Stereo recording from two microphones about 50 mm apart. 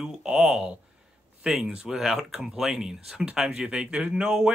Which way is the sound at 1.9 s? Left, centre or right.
Centre.